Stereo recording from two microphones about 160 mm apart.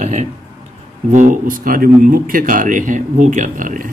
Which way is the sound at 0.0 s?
50° right (ahead or behind).